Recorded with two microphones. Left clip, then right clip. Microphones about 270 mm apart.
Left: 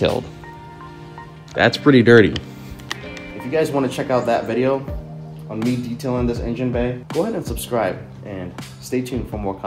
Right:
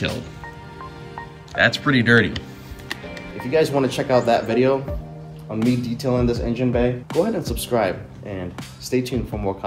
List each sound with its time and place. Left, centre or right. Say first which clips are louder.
1.5 s speech: left 3 dB; left
3.3 s speech: right 1 dB; centre